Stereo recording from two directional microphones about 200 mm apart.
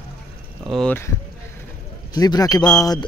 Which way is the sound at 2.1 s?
20° left (ahead or behind).